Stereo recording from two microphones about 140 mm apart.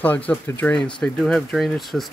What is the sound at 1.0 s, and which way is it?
Speech, 5° left (ahead or behind).